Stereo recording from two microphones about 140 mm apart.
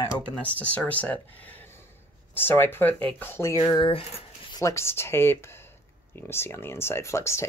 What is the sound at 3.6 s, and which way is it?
Speech, 40° left (ahead or behind).